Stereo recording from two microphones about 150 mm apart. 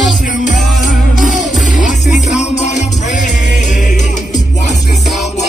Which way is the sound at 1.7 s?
55° left (ahead or behind).